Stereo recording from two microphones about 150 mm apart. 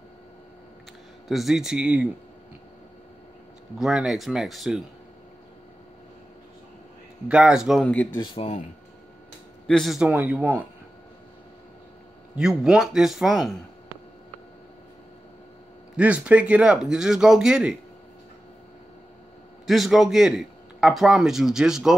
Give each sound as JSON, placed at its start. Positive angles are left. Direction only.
{"t": 1.3, "sound": "a man's voice", "side_deg": 0}
{"t": 3.7, "sound": "a man's voice", "side_deg": -5}
{"t": 7.2, "sound": "a man's voice", "side_deg": -5}
{"t": 7.8, "sound": "speech", "side_deg": 10}
{"t": 9.7, "sound": "a man's voice", "side_deg": 0}
{"t": 12.4, "sound": "a man's voice", "side_deg": -5}
{"t": 16.0, "sound": "a man's voice", "side_deg": -10}
{"t": 19.6, "sound": "a man's voice", "side_deg": 0}